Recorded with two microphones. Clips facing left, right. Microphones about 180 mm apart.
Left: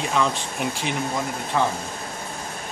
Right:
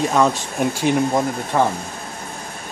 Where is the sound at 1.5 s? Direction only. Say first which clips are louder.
Right 4 dB; 45° right (ahead or behind).